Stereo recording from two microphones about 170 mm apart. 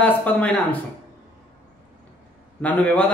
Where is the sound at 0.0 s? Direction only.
5° left (ahead or behind).